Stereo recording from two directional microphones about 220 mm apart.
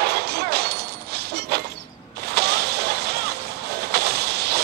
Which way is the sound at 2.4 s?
50° right (ahead or behind).